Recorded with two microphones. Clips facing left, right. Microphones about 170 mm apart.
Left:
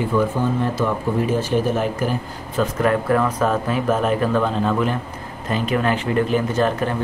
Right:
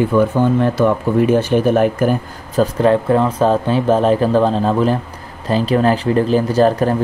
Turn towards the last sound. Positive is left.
turn(degrees=-35)  # may be behind; listen again after turning